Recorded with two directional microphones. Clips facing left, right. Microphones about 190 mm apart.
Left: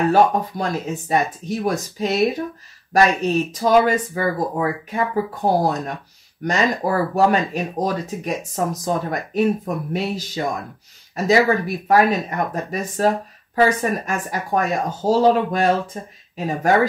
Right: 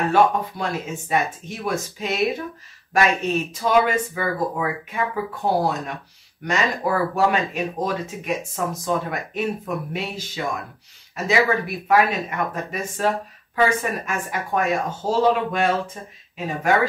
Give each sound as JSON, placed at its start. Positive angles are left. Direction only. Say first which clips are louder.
{"t": 0.1, "sound": "speech", "louder": "left 2 dB", "side_deg": 40}